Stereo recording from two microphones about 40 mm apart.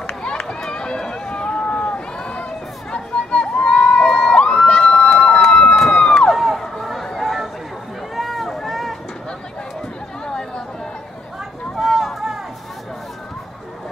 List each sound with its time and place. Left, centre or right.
0.7 s run: left
2.9 s crowd: left
4.9 s run: left
5.8 s crowd: centre
6.3 s a sound: centre
6.8 s chatter: centre
8.2 s vehicle: centre
10.2 s chatter: left
11.7 s a sound: centre